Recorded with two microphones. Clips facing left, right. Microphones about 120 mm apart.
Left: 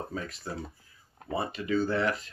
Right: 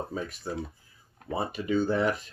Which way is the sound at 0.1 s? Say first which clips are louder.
Right 3 dB; 15° right (ahead or behind).